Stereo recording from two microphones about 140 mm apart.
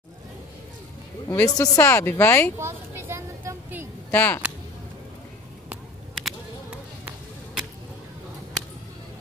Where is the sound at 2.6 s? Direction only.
20° right (ahead or behind).